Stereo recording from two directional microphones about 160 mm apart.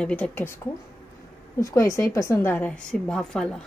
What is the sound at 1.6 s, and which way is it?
A woman's voice, 20° left (ahead or behind).